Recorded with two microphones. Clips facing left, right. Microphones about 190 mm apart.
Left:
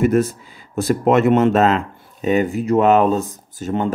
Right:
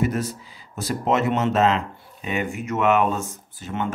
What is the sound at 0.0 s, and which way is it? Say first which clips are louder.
Speech: left 8 dB; 55° left (ahead or behind).